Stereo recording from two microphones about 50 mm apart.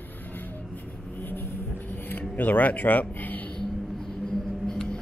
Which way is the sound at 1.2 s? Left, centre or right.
Left.